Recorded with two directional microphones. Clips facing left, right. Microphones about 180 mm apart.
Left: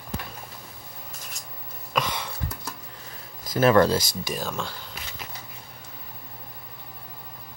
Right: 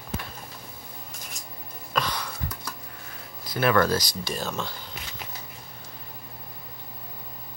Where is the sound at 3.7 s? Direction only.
30° left (ahead or behind).